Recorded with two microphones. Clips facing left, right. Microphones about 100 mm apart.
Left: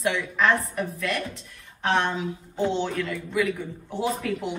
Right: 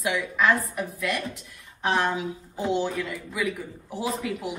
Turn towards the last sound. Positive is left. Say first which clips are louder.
# left 2 dB
turn(degrees=-15)  # may be behind; listen again after turning